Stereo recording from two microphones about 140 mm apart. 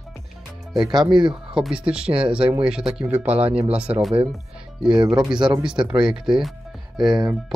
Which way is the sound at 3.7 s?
10° right (ahead or behind).